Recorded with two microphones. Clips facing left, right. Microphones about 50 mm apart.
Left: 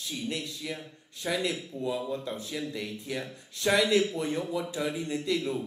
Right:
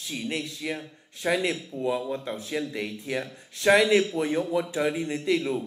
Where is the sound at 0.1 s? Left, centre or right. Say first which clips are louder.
Right 4 dB; right.